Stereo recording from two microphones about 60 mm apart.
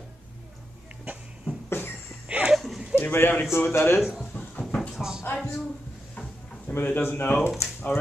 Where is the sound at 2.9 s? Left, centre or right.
Left.